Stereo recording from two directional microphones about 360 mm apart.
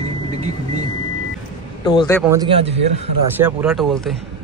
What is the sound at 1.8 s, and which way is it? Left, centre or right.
Speech, centre.